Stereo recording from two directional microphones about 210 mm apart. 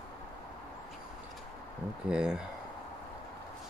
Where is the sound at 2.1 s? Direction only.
5° right (ahead or behind).